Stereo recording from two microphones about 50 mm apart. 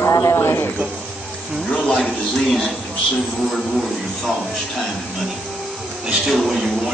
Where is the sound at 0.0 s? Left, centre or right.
Left.